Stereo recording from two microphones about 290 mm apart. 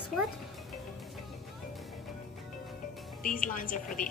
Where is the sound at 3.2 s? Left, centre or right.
Left.